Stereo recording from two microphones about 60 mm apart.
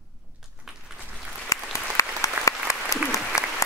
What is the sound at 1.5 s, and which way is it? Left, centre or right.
Applause, left.